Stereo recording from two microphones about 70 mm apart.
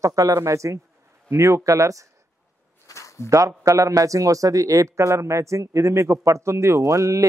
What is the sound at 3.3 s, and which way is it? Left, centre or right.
A man's voice, right.